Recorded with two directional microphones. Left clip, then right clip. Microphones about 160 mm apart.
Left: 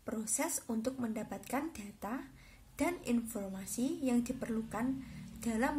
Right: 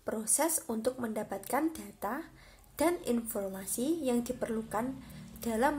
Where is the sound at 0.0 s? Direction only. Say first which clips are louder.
Right 6 dB; 30° left (ahead or behind).